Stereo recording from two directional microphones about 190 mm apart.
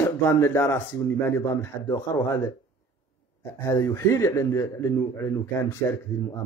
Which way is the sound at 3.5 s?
15° left (ahead or behind).